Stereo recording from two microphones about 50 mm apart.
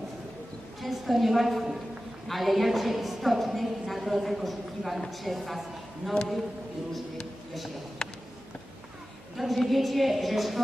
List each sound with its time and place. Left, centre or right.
0.7 s a woman's voice: centre
8.0 s a sound: centre
9.4 s a woman's voice: centre